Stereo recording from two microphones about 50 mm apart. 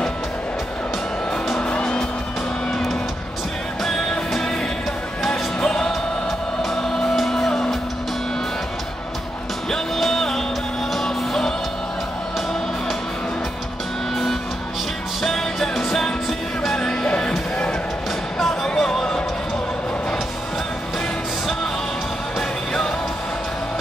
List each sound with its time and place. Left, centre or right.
1.6 s music: left
2.7 s music: centre
5.6 s music: centre
9.7 s music: centre
15.2 s music: centre
18.4 s music: centre